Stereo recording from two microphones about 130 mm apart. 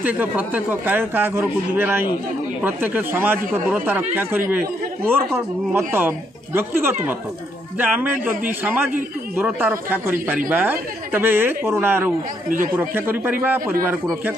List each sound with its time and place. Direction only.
0.0 s speech: 15° right (ahead or behind)
12.4 s speech: 90° right
12.7 s speech: 15° right (ahead or behind)